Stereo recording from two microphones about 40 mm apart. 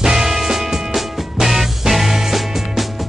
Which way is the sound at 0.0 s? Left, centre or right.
Centre.